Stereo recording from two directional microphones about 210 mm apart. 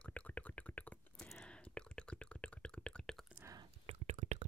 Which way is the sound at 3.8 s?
35° right (ahead or behind).